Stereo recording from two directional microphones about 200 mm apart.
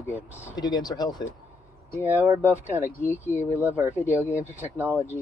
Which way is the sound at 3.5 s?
10° right (ahead or behind).